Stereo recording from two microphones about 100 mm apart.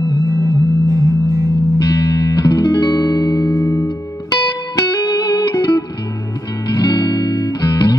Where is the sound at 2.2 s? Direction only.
40° left (ahead or behind).